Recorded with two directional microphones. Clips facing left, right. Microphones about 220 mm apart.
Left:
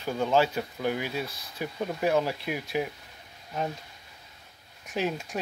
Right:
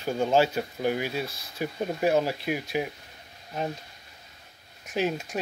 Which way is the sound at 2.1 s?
25° right (ahead or behind).